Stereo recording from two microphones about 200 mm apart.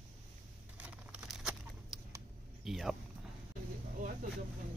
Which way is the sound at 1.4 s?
Centre (ahead or behind).